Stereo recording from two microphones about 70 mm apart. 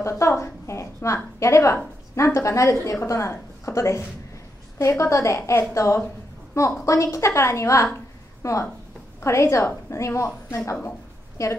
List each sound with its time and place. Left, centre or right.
0.0 s a woman's voice: left